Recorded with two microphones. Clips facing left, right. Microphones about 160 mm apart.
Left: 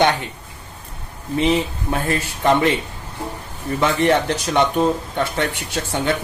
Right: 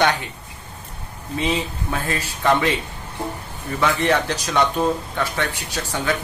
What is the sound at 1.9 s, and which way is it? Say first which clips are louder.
Speech: left 4 dB; 25° left (ahead or behind).